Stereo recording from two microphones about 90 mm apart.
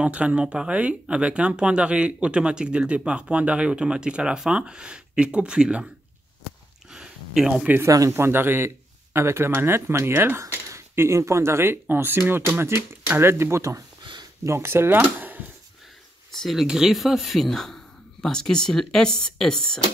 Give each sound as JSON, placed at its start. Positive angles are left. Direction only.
{"t": 0.0, "sound": "speech", "side_deg": -15}
{"t": 6.9, "sound": "a sound", "side_deg": -5}
{"t": 7.8, "sound": "speech", "side_deg": -40}
{"t": 8.1, "sound": "speech", "side_deg": -25}
{"t": 15.1, "sound": "a sound", "side_deg": -20}
{"t": 16.3, "sound": "speech", "side_deg": 0}